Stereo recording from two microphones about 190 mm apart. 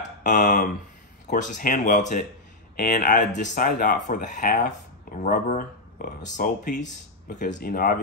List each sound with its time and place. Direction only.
0.2 s speech: 45° left (ahead or behind)